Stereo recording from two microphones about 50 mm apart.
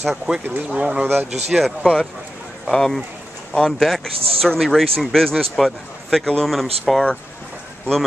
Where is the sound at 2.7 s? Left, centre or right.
Centre.